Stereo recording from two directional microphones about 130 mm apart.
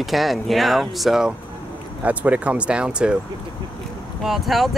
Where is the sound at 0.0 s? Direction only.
Centre (ahead or behind).